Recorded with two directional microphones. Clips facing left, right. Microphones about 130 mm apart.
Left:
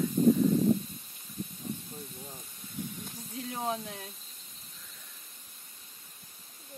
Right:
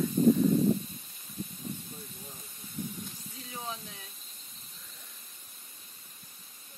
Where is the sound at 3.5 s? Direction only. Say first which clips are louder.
Left 7 dB; 55° left (ahead or behind).